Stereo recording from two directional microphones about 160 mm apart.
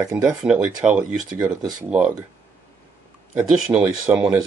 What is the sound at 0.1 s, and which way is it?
Speech, 5° right (ahead or behind).